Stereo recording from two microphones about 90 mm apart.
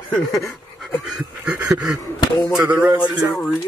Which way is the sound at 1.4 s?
15° right (ahead or behind).